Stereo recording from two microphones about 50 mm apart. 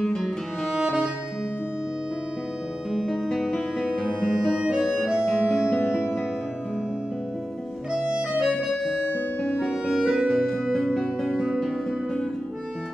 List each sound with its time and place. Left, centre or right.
0.0 s music: centre
0.7 s music: centre
2.9 s music: centre
4.6 s music: centre
5.0 s keyboard: centre
7.9 s music: centre
9.8 s music: centre
10.2 s music: centre